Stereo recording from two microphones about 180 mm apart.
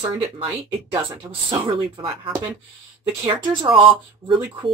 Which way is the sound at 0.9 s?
20° right (ahead or behind).